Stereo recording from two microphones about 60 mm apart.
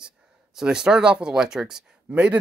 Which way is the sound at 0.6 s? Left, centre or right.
Centre.